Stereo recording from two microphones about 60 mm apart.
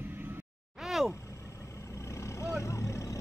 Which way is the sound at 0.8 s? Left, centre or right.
Centre.